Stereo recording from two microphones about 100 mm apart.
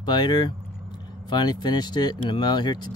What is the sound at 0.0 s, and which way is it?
Speech, 45° left (ahead or behind).